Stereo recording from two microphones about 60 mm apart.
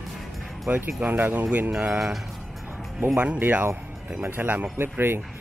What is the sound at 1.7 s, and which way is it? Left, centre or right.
Speech, centre.